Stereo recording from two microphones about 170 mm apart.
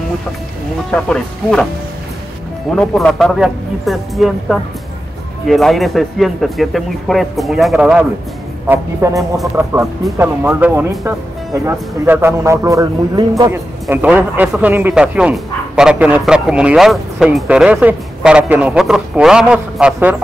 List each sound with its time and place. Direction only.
1.0 s speech: 5° left (ahead or behind)
2.7 s speech: 5° left (ahead or behind)
8.6 s speech: 15° right (ahead or behind)